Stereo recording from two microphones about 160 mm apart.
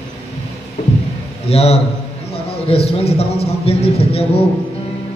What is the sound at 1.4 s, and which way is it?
A man's voice, 40° left (ahead or behind).